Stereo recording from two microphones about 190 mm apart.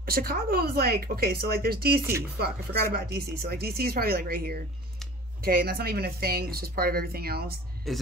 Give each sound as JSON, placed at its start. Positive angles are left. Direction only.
{"t": 0.0, "sound": "speech", "side_deg": -50}
{"t": 7.9, "sound": "speech", "side_deg": 0}